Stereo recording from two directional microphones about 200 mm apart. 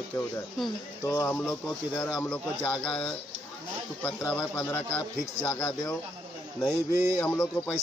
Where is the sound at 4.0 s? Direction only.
10° left (ahead or behind).